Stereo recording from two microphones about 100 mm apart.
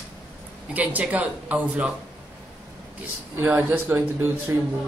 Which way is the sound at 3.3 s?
25° right (ahead or behind).